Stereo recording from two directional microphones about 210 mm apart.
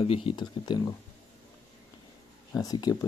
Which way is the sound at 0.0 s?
25° left (ahead or behind).